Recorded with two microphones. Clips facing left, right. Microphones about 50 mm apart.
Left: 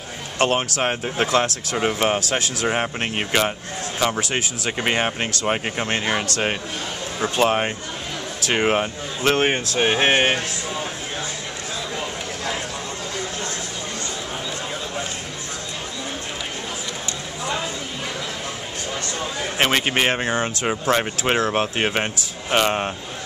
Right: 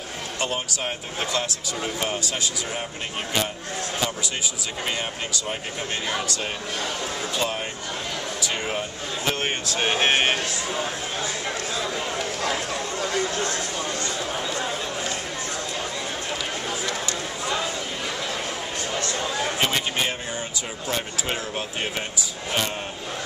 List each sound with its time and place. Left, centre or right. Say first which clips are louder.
0.4 s speech: left 8 dB; left
4.0 s speech: left 9 dB; left
9.5 s speech: left 4 dB; left
19.6 s speech: left 8 dB; left
20.6 s speech: left 10 dB; left